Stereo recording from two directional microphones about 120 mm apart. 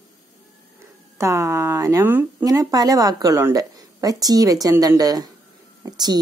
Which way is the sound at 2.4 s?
30° right (ahead or behind).